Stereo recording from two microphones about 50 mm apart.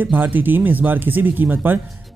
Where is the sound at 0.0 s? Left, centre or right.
Right.